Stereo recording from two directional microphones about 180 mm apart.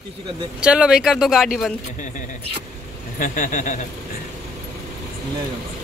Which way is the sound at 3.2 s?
45° left (ahead or behind).